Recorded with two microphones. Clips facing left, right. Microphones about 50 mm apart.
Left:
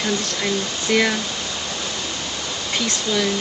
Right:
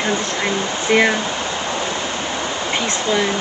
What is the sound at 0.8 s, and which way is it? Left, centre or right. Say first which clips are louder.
Speech: right 4 dB; right.